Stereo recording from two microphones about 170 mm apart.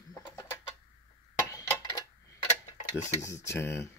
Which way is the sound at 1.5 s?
20° left (ahead or behind).